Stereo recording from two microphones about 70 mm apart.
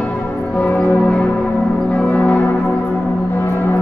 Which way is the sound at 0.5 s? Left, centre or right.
Centre.